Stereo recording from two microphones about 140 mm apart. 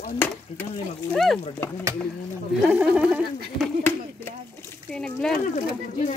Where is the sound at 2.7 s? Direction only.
10° right (ahead or behind).